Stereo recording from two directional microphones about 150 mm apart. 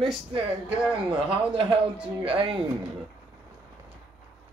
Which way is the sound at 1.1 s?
35° right (ahead or behind).